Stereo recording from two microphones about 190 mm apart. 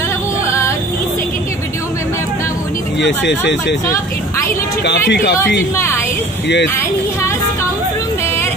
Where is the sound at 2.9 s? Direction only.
65° left (ahead or behind).